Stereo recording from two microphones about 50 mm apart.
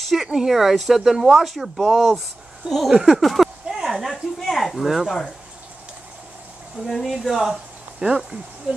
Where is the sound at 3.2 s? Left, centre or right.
Centre.